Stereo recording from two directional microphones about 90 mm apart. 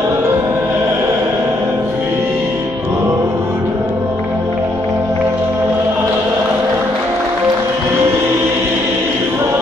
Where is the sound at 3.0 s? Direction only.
30° right (ahead or behind).